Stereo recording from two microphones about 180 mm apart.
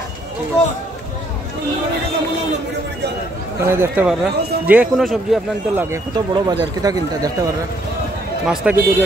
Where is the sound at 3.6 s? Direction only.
15° right (ahead or behind).